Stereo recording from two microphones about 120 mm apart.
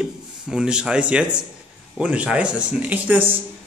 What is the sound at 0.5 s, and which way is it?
Speech, 5° right (ahead or behind).